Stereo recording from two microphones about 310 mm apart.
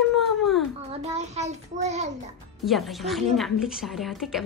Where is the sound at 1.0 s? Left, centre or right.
Right.